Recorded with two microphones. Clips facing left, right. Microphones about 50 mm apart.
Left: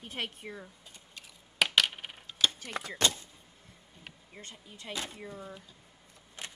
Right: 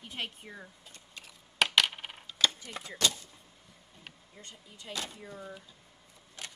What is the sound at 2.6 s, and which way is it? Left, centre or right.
Speech, left.